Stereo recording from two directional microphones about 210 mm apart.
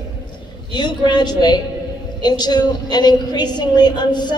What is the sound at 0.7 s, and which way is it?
A woman's voice, 20° left (ahead or behind).